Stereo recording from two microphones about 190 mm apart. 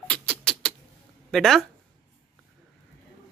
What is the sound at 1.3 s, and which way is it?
Speech, centre (ahead or behind).